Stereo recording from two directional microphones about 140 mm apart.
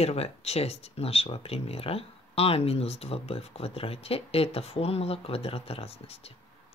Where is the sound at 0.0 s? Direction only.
50° left (ahead or behind).